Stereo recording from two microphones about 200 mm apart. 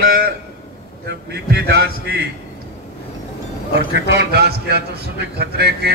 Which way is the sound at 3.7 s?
60° right (ahead or behind).